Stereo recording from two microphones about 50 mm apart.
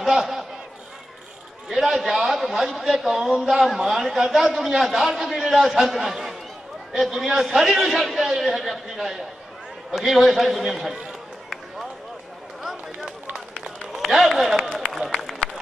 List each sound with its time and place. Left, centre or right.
0.0 s a sound: centre
1.7 s a man's voice: centre
10.9 s run: centre
13.0 s run: centre
14.0 s a man's voice: centre
14.8 s run: centre